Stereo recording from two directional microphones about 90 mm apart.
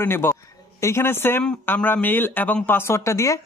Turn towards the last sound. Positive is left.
turn(degrees=35)  # may be behind; listen again after turning